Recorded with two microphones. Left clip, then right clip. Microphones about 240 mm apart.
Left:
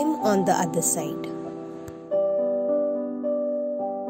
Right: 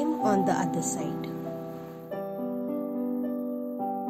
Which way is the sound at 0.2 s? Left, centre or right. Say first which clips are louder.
Left 3 dB; centre.